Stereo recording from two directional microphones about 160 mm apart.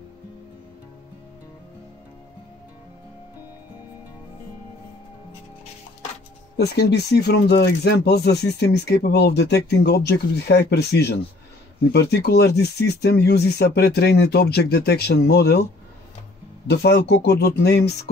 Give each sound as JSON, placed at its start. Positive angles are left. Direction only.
{"t": 6.5, "sound": "speech", "side_deg": 90}
{"t": 16.6, "sound": "speech", "side_deg": 90}